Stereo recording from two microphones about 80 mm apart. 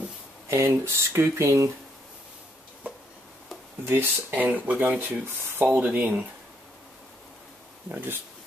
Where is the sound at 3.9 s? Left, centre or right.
Right.